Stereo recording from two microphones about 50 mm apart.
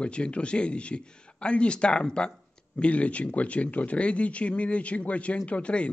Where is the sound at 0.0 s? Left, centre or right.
Left.